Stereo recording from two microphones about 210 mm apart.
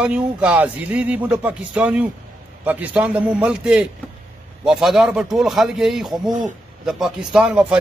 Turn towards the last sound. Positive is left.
turn(degrees=-5)  # may be behind; listen again after turning